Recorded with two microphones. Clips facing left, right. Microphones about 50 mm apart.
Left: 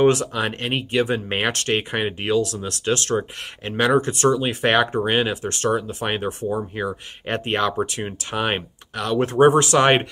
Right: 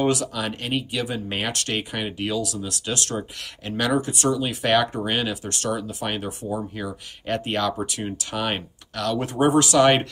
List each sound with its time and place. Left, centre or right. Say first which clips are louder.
0.0 s speech: left 5 dB; left
4.0 s speech: left 4 dB; left
9.2 s speech: left 5 dB; left